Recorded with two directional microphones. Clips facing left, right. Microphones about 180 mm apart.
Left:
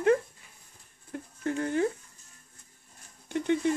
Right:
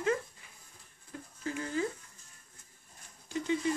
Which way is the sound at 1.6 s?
60° left (ahead or behind).